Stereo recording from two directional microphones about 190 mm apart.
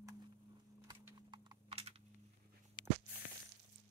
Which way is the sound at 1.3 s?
30° right (ahead or behind).